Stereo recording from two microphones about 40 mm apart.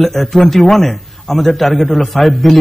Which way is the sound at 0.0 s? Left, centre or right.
Centre.